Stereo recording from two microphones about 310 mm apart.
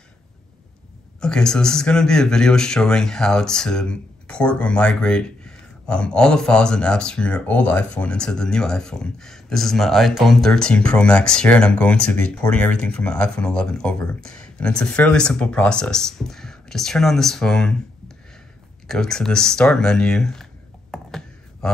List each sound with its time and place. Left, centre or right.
1.2 s speech: centre
20.9 s computer keyboard: centre